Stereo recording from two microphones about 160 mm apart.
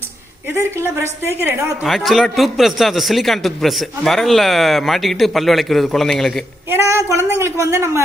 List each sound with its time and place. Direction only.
0.5 s a woman's voice: 15° right (ahead or behind)
1.9 s a man's voice: centre (ahead or behind)
6.7 s a woman's voice: 15° right (ahead or behind)